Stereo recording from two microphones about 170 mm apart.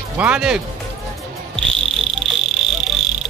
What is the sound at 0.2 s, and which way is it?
Speech, 5° right (ahead or behind).